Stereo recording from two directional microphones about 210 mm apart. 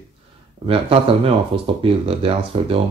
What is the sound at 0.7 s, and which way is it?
Speech, 25° right (ahead or behind).